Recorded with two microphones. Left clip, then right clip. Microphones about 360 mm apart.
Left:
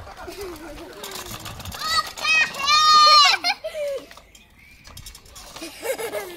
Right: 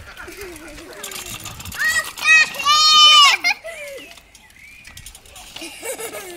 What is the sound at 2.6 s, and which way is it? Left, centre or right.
Goat, centre.